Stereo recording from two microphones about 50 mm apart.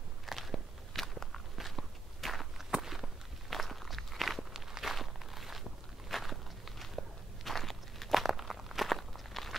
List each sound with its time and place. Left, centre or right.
0.3 s walk: centre